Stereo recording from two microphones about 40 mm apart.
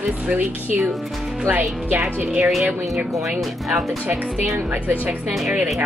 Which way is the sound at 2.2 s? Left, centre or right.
Right.